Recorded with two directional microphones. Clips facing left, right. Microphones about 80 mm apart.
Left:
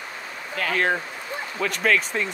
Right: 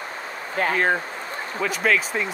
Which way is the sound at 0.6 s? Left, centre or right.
Right.